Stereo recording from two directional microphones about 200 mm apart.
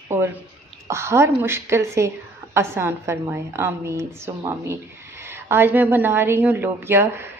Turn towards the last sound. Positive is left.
turn(degrees=-10)  # may be behind; listen again after turning